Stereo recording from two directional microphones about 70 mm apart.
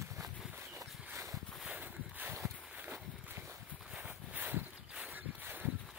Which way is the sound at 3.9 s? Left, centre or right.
Centre.